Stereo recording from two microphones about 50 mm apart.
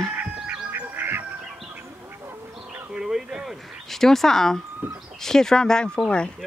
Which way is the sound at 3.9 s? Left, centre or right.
Centre.